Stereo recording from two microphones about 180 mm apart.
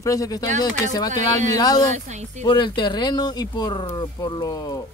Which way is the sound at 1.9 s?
40° right (ahead or behind).